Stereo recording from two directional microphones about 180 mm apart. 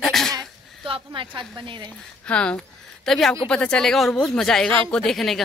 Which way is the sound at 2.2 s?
5° left (ahead or behind).